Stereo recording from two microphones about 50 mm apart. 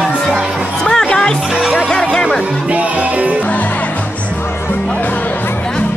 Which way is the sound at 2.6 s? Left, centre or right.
Right.